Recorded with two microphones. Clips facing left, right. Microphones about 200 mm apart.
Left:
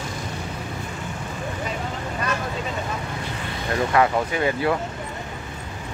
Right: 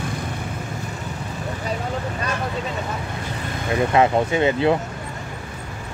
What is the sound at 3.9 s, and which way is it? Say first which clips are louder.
Speech: right 3 dB; 25° right (ahead or behind).